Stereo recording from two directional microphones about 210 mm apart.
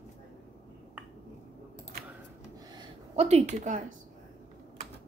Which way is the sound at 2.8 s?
30° right (ahead or behind).